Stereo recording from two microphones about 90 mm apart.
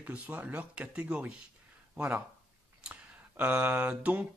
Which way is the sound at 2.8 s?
15° right (ahead or behind).